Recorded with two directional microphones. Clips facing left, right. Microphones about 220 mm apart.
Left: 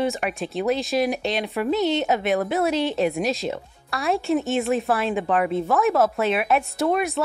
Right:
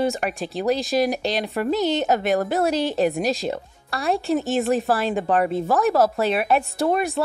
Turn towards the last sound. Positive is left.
turn(degrees=-30)  # may be behind; listen again after turning